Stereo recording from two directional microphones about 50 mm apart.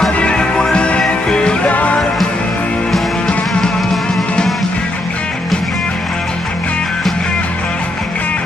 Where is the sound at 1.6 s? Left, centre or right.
Left.